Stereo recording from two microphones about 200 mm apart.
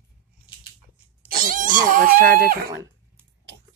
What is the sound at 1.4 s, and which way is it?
Speech, 45° right (ahead or behind).